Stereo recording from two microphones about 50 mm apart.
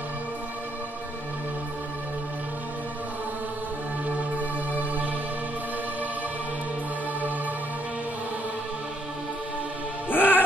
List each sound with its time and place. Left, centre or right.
4.4 s music: right
10.0 s music: left